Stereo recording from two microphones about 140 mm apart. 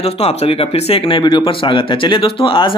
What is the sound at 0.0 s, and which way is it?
Speech, 45° left (ahead or behind).